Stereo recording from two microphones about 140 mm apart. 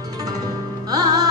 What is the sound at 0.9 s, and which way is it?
Music, 25° right (ahead or behind).